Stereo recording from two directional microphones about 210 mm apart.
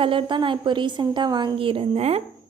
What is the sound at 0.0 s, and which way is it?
A woman's voice, 25° right (ahead or behind).